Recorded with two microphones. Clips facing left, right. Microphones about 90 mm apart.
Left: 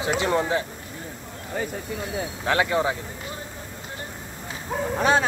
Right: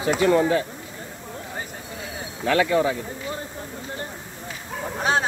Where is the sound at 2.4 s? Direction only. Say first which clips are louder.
Right 3 dB; 25° left (ahead or behind).